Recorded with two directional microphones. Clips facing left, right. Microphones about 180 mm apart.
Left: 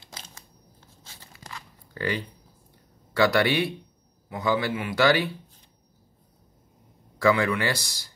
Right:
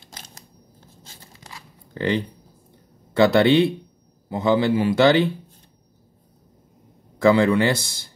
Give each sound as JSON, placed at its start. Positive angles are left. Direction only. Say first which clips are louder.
{"t": 1.5, "sound": "tearing", "louder": "right 3 dB", "side_deg": -20}
{"t": 3.1, "sound": "a man's voice", "louder": "right 6 dB", "side_deg": -20}
{"t": 7.2, "sound": "a man's voice", "louder": "right 6 dB", "side_deg": -25}